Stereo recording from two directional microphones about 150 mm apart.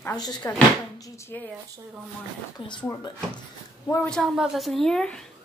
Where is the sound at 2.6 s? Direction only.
35° left (ahead or behind).